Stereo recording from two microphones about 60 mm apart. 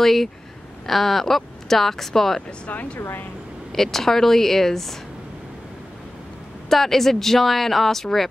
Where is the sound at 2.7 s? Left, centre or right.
Left.